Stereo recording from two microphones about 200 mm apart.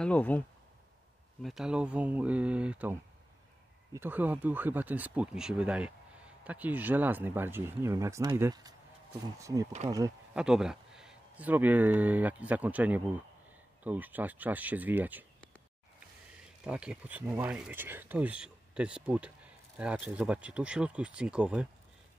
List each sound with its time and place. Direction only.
0.0 s speech: 5° left (ahead or behind)
1.4 s speech: centre (ahead or behind)
10.3 s speech: 5° right (ahead or behind)
16.6 s speech: 5° right (ahead or behind)